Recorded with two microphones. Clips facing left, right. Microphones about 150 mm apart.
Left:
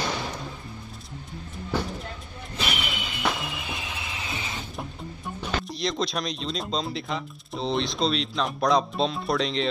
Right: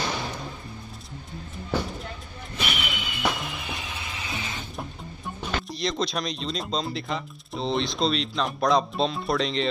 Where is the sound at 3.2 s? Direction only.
Centre (ahead or behind).